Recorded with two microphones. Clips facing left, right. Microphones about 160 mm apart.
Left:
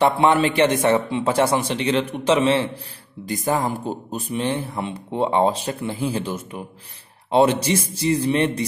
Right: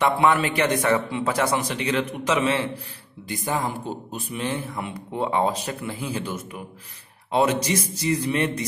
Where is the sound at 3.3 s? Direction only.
40° left (ahead or behind).